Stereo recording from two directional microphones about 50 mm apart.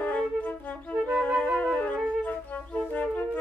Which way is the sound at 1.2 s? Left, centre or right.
Left.